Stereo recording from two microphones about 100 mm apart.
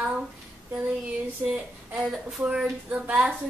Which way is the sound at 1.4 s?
10° right (ahead or behind).